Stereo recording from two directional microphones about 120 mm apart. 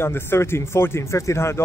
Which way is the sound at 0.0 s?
20° left (ahead or behind).